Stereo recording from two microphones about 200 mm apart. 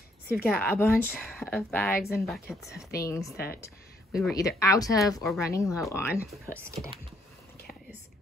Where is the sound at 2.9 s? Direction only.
15° left (ahead or behind).